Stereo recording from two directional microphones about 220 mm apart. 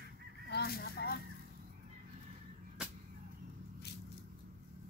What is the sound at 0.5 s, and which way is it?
Fowl, 45° left (ahead or behind).